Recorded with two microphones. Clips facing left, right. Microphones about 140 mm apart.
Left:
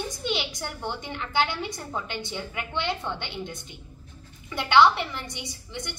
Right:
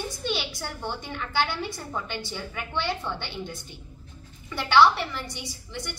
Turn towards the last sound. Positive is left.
turn(degrees=20)  # may be behind; listen again after turning